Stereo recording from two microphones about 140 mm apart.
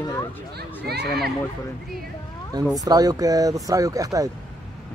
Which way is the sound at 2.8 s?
25° right (ahead or behind).